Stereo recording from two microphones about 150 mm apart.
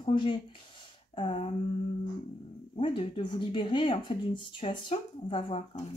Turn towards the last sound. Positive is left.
turn(degrees=35)  # may be behind; listen again after turning